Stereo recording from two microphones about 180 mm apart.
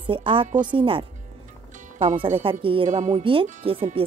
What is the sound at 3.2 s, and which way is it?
Speech, 30° right (ahead or behind).